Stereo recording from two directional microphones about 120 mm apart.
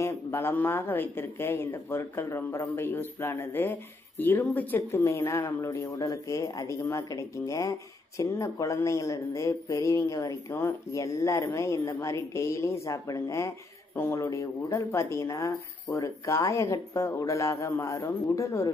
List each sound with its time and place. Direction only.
0.0 s speech: 20° left (ahead or behind)